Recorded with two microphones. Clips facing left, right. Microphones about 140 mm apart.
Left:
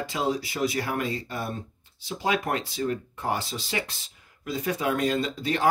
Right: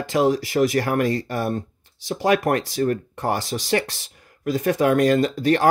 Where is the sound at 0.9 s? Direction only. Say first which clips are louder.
Right 8 dB; 80° right.